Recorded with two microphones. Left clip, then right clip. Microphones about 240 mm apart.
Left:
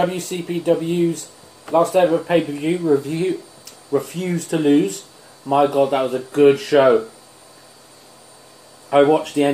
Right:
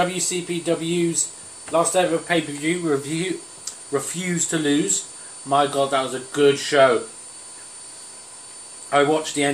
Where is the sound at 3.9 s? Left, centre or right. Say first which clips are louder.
Left 3 dB; centre.